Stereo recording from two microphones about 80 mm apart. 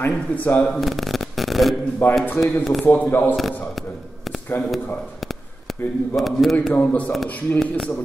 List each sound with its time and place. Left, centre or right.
0.0 s speech: left
0.7 s speech: centre
2.0 s speech: left
2.4 s a man's voice: centre
2.8 s speech: left
6.1 s a man's voice: centre
6.5 s speech: centre
7.1 s a man's voice: centre